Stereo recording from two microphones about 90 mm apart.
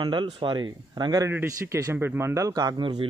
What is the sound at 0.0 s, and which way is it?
Speech, 60° right (ahead or behind).